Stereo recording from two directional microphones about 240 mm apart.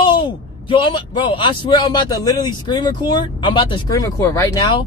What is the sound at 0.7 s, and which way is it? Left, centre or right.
A man's voice, centre.